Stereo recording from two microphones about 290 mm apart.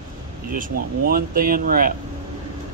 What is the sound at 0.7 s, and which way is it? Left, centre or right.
Speech, right.